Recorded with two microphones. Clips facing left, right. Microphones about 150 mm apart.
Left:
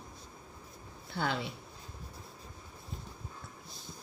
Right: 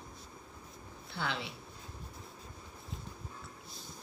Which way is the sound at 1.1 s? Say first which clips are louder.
Left 4 dB; 45° left (ahead or behind).